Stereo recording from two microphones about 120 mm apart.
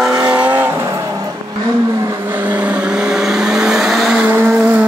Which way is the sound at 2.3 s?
15° right (ahead or behind).